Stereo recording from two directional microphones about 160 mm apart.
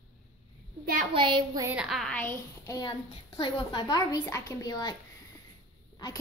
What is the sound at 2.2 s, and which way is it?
A child's voice, 15° left (ahead or behind).